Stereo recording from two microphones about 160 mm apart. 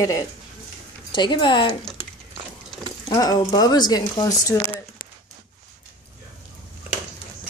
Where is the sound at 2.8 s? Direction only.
25° left (ahead or behind).